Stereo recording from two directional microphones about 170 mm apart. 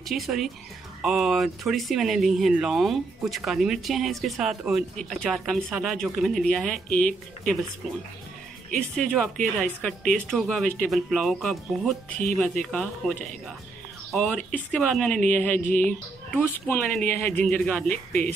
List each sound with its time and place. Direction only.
0.1 s speech: centre (ahead or behind)
9.6 s speech: 5° left (ahead or behind)
14.1 s speech: 5° left (ahead or behind)
15.6 s music: 50° left (ahead or behind)
16.3 s speech: 10° left (ahead or behind)